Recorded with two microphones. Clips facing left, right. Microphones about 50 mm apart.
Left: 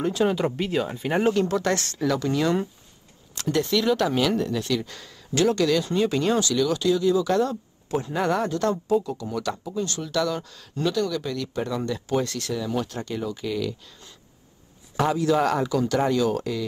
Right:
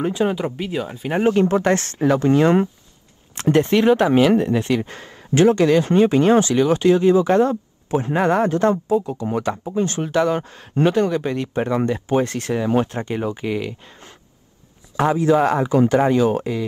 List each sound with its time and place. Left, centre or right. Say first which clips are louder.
0.0 s speech: right 2 dB; centre
1.2 s speech: right 7 dB; right